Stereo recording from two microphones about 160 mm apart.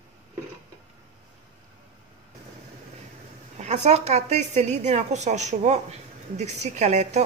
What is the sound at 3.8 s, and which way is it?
A woman's voice, 45° right (ahead or behind).